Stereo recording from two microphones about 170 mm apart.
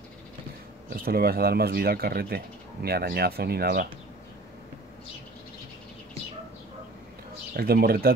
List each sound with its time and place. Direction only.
1.0 s speech: 65° right (ahead or behind)
7.5 s speech: 65° right (ahead or behind)